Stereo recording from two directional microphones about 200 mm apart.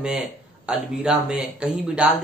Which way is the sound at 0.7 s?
5° right (ahead or behind).